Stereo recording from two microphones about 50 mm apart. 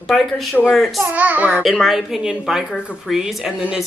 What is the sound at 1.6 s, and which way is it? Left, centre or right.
A woman's voice, centre.